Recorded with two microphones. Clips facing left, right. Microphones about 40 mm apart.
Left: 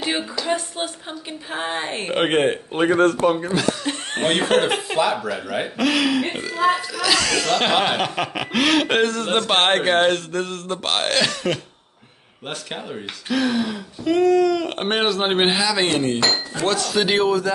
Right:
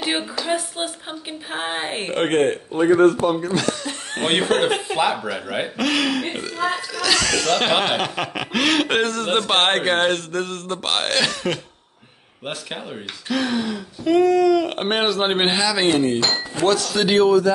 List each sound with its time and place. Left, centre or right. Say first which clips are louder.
0.2 s speech: even; centre
2.1 s speech: even; left
2.7 s speech: right 3 dB; left
4.5 s speech: left 2 dB; left
4.9 s speech: even; centre
5.8 s speech: left 2 dB; centre